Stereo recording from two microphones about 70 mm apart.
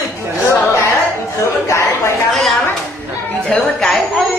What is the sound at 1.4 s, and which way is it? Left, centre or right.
Chatter, left.